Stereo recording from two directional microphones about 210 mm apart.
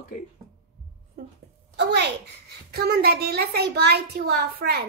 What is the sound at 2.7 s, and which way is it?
Child singing, 50° right (ahead or behind).